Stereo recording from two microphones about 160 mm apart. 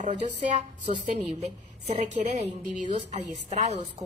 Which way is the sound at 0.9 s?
35° right (ahead or behind).